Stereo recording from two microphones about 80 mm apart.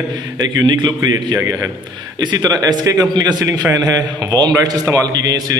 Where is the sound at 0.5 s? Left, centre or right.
Right.